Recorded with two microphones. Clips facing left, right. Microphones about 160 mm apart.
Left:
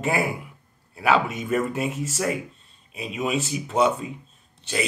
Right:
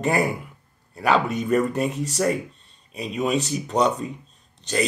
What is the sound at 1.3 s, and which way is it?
Speech, 40° right (ahead or behind).